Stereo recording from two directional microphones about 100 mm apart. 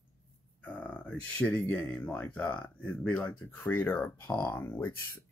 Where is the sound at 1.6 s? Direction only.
25° left (ahead or behind).